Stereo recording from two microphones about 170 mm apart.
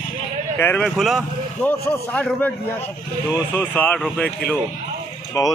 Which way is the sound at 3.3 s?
10° left (ahead or behind).